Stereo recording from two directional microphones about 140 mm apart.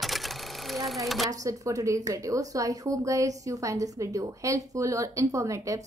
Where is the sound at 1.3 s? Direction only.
25° right (ahead or behind).